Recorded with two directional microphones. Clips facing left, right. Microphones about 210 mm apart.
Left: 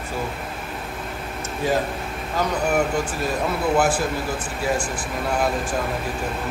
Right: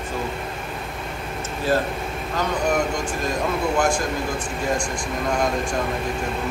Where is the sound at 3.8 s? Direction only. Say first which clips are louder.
Even; 5° left (ahead or behind).